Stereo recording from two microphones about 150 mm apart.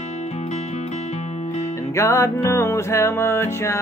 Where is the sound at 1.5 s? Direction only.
20° left (ahead or behind).